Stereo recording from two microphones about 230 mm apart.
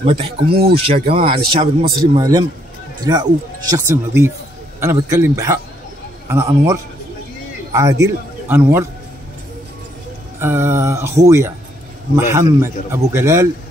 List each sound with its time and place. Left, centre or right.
0.0 s speech: right
0.5 s speech: right
1.1 s speech: right
10.4 s speech: centre